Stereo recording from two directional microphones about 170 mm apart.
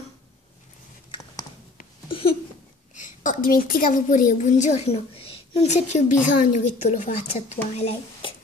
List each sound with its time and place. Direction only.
2.0 s a sound: 30° left (ahead or behind)
3.0 s a woman's voice: 50° left (ahead or behind)
7.7 s speech: 35° left (ahead or behind)